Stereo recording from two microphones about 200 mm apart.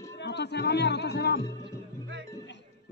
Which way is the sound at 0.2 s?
60° left (ahead or behind).